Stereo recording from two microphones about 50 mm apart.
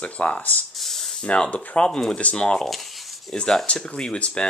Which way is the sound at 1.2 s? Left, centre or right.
Left.